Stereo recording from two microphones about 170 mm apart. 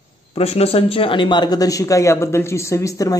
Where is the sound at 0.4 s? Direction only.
35° left (ahead or behind).